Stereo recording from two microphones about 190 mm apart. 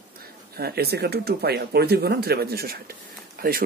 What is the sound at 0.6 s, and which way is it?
Speech, 55° right (ahead or behind).